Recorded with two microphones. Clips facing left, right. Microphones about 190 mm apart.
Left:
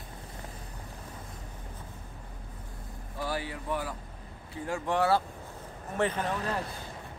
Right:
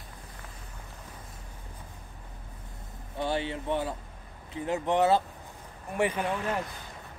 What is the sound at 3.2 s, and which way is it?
Speech, 25° right (ahead or behind).